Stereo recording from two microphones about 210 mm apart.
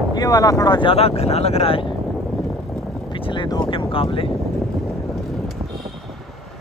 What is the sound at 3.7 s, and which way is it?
Speech, 25° left (ahead or behind).